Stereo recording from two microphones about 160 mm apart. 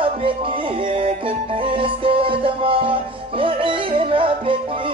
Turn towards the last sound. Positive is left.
turn(degrees=-35)  # may be behind; listen again after turning